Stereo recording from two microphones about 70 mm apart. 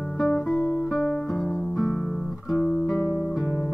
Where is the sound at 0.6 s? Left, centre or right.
Left.